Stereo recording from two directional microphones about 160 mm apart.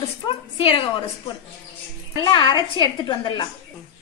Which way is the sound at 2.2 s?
30° left (ahead or behind).